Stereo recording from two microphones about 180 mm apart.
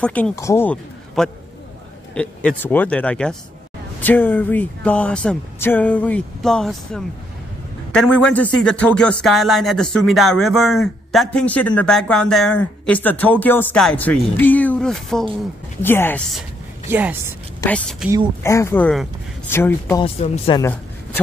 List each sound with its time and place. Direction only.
0.0 s speech: 10° left (ahead or behind)
16.9 s speech: 10° right (ahead or behind)
17.6 s a woman's voice: 5° left (ahead or behind)
20.0 s speech: 30° left (ahead or behind)
20.5 s a sound: 15° left (ahead or behind)